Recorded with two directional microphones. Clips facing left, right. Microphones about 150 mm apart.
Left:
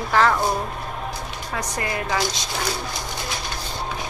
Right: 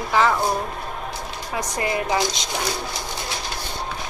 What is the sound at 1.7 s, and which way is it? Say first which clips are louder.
Speech: right 3 dB; 20° right (ahead or behind).